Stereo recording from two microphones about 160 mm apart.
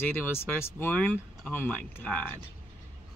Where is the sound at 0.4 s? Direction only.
15° left (ahead or behind).